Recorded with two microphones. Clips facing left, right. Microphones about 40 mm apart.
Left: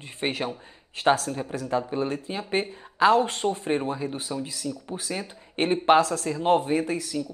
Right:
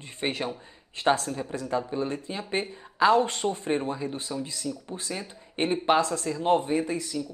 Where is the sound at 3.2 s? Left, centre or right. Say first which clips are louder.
Left 2 dB; centre.